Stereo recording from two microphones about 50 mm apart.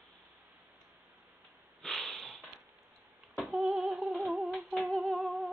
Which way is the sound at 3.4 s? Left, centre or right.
Centre.